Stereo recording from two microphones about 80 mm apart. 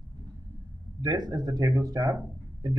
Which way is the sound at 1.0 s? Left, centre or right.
Right.